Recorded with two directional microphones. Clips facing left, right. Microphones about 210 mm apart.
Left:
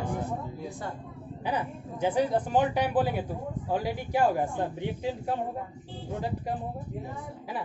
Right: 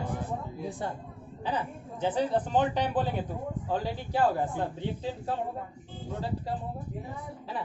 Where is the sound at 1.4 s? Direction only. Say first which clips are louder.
Left 1 dB; 10° left (ahead or behind).